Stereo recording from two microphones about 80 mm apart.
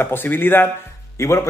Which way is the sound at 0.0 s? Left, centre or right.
Left.